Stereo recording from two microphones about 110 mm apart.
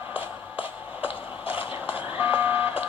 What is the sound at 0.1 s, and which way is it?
Shuffle, 15° right (ahead or behind).